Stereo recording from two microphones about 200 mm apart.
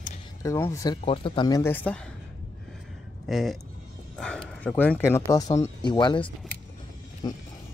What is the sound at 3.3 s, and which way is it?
Speech, centre (ahead or behind).